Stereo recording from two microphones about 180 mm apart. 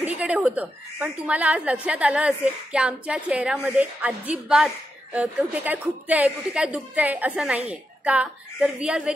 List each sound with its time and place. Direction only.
0.0 s speech: 10° right (ahead or behind)